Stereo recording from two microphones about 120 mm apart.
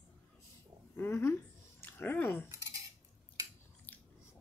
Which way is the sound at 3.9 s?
15° left (ahead or behind).